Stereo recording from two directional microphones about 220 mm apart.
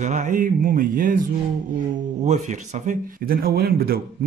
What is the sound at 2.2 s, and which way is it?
Speech, 35° right (ahead or behind).